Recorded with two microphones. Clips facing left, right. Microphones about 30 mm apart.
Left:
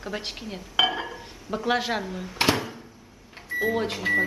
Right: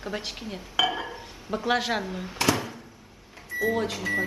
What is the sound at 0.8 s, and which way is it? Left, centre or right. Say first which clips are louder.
Speech: left 2 dB; left.